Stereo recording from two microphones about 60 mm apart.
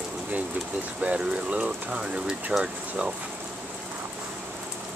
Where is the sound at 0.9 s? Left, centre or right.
Centre.